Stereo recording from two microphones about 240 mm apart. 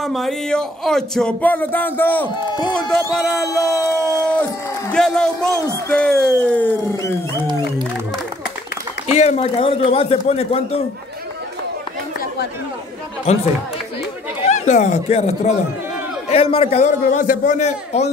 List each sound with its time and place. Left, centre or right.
0.0 s music: centre
9.0 s a man's voice: left
13.3 s a man's voice: left